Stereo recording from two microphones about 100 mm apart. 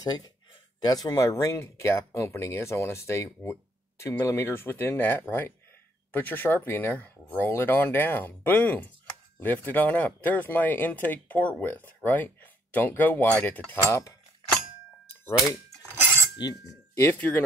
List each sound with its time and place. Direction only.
0.0 s speech: 40° left (ahead or behind); by 13.7 s 15° left (ahead or behind)
13.8 s speech: 30° left (ahead or behind)
16.0 s cutlery: 25° right (ahead or behind)
16.9 s speech: 30° left (ahead or behind)